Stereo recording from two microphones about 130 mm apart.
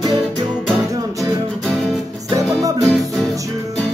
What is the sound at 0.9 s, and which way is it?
Music, 30° right (ahead or behind).